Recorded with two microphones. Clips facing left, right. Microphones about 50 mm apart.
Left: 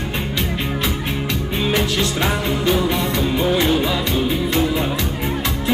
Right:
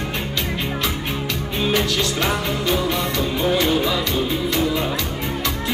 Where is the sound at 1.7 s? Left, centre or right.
Centre.